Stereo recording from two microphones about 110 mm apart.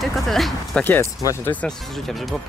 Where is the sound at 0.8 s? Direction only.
20° left (ahead or behind).